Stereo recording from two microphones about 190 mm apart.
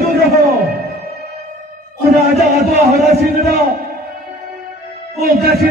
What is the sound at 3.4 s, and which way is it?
Speech, 55° right (ahead or behind).